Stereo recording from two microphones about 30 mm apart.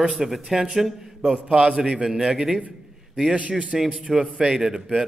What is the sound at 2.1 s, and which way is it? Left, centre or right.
Speech, centre.